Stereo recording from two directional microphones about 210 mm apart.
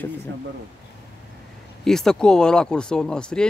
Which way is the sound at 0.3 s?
55° right (ahead or behind).